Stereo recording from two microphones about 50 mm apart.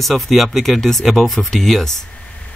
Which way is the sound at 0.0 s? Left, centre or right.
Centre.